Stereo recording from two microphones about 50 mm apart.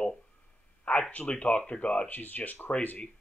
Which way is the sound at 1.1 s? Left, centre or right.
Left.